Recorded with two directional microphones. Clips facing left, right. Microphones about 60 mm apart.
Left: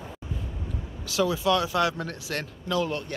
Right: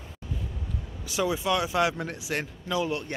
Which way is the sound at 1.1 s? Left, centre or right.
Right.